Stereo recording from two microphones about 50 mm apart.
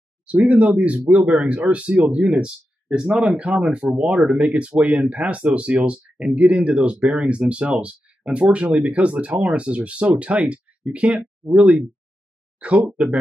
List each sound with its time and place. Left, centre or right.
0.3 s speech: right
1.1 s speech: centre
1.7 s speech: right